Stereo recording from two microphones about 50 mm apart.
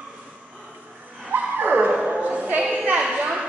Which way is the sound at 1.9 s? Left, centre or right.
Right.